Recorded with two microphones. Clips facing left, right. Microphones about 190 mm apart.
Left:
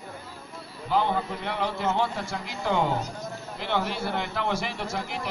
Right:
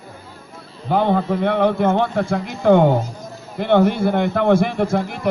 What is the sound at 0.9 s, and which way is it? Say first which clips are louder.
A man's voice: right 8 dB; 55° right (ahead or behind).